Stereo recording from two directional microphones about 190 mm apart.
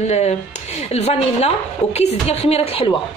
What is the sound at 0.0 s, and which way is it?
A woman's voice, 35° left (ahead or behind).